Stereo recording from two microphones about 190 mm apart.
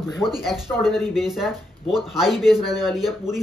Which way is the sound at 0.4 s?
Centre (ahead or behind).